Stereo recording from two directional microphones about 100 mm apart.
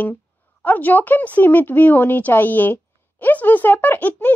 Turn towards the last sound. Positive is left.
turn(degrees=20)  # may be behind; listen again after turning